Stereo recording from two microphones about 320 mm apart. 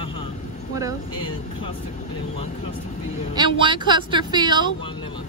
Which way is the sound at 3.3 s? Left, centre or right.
Centre.